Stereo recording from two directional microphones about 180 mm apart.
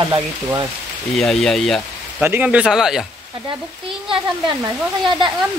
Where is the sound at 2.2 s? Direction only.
10° right (ahead or behind).